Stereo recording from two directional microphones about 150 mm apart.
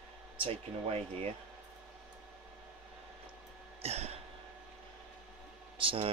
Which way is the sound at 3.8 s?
45° right (ahead or behind).